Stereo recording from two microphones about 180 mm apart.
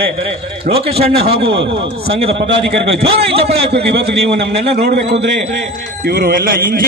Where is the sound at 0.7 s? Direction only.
35° right (ahead or behind).